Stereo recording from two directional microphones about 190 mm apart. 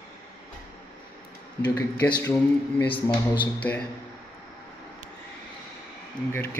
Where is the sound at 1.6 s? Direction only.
20° left (ahead or behind).